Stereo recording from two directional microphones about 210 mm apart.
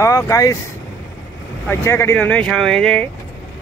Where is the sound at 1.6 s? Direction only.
10° left (ahead or behind).